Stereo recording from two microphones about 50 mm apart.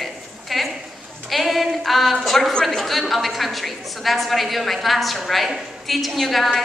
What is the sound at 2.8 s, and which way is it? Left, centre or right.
A woman's voice, centre.